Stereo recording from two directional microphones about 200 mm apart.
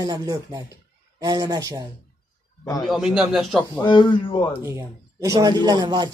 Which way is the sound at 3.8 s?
25° left (ahead or behind).